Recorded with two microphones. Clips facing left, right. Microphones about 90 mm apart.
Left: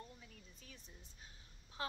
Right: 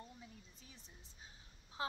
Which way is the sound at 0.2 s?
25° right (ahead or behind).